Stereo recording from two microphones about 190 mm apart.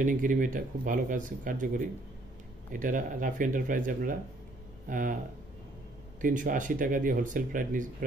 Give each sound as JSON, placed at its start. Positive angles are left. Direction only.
{"t": 0.0, "sound": "speech", "side_deg": -45}
{"t": 6.2, "sound": "speech", "side_deg": -45}